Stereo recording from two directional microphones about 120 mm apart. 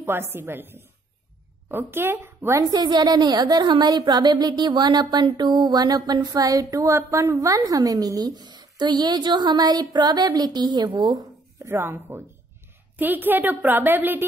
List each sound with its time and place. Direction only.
0.0 s a woman's voice: 20° right (ahead or behind)
11.7 s a woman's voice: 20° right (ahead or behind)